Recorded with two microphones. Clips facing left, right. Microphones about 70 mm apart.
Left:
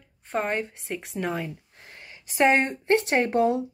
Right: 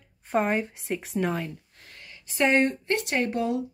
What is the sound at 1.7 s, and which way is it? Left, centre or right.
Speech, left.